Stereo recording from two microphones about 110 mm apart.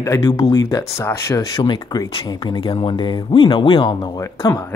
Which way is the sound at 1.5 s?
45° left (ahead or behind).